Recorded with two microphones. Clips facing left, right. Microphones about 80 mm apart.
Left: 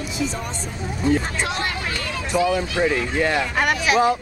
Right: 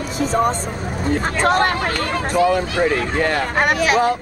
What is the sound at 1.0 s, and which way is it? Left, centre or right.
Speech, right.